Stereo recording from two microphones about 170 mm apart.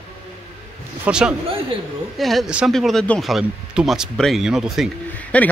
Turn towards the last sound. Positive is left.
turn(degrees=10)  # may be behind; listen again after turning